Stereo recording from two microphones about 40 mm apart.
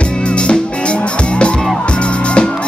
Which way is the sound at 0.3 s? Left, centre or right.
Left.